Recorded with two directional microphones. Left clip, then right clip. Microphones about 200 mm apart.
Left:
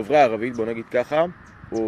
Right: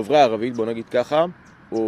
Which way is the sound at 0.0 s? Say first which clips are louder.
Right 1 dB; 20° right (ahead or behind).